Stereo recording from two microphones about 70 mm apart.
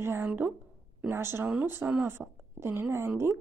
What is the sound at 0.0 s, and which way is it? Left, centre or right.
Speech, right.